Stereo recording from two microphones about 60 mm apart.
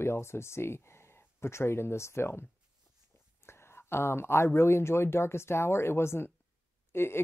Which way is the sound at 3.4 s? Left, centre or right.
Left.